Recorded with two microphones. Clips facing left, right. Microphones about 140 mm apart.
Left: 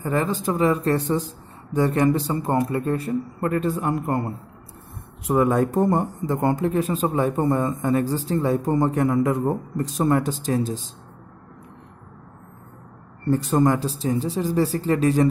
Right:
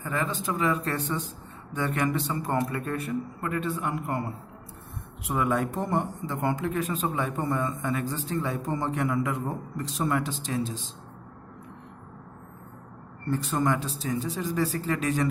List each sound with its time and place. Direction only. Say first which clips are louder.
0.0 s speech: left 7 dB; 35° left (ahead or behind)
13.3 s speech: left 7 dB; 40° left (ahead or behind)